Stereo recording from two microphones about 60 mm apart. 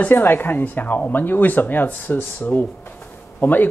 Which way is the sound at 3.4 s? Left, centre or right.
Left.